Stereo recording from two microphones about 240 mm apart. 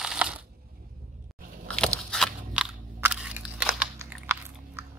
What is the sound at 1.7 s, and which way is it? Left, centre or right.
Crunch, centre.